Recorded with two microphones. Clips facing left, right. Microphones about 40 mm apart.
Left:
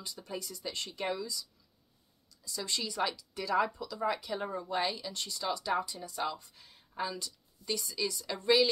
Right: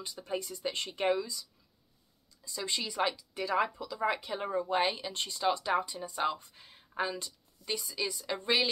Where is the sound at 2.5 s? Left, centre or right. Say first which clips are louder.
Right 1 dB; right.